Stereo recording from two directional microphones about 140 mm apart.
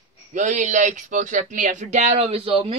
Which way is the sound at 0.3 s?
65° right (ahead or behind).